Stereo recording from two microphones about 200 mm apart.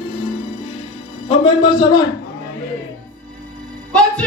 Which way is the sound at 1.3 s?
25° left (ahead or behind).